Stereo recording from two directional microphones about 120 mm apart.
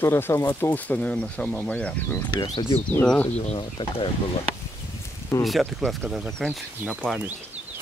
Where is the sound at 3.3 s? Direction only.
50° left (ahead or behind).